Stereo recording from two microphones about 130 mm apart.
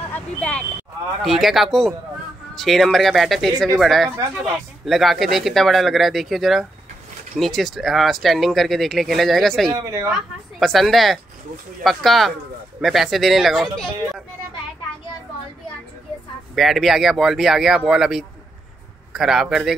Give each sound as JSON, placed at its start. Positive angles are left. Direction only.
{"t": 0.1, "sound": "speech", "side_deg": 10}
{"t": 9.8, "sound": "speech", "side_deg": -20}
{"t": 10.6, "sound": "speech", "side_deg": 0}
{"t": 16.5, "sound": "speech", "side_deg": 0}